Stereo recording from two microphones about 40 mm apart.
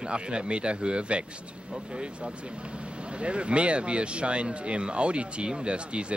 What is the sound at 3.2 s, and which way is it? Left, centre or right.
Speech, right.